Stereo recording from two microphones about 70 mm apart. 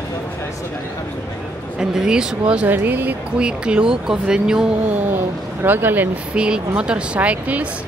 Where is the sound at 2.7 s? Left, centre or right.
Right.